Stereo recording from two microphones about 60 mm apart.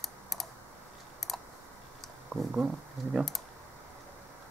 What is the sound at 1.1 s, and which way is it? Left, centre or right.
Typing, centre.